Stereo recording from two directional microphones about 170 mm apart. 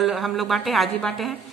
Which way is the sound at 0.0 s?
Centre (ahead or behind).